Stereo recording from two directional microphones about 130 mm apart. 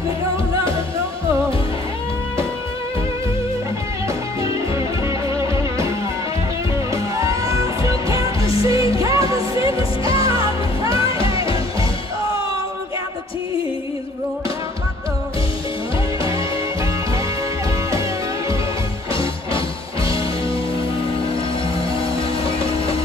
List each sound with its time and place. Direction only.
4.7 s music: 25° right (ahead or behind)
11.1 s music: 45° left (ahead or behind)
19.1 s music: 45° left (ahead or behind)
22.4 s music: 45° left (ahead or behind)